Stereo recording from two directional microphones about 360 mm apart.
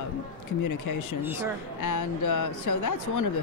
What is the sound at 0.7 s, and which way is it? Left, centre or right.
Speech, left.